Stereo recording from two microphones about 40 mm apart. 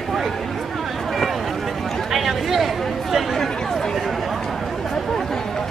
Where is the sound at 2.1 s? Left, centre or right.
Centre.